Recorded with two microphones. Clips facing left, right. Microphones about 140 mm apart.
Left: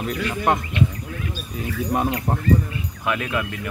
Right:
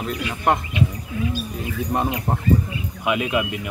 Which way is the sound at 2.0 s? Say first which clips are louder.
Even; 5° right (ahead or behind).